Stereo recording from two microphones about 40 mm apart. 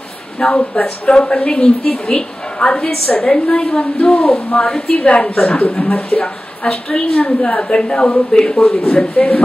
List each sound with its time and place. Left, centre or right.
0.4 s a woman's voice: left